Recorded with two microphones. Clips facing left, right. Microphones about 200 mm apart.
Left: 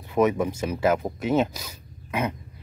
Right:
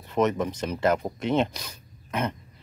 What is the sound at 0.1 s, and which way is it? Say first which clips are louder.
Speech: left 2 dB; 10° left (ahead or behind).